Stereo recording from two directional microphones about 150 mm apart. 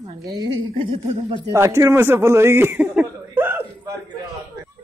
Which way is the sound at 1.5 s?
20° right (ahead or behind).